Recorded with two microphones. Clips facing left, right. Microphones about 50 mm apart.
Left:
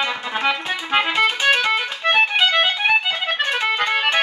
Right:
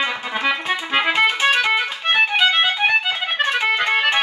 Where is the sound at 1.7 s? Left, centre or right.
Centre.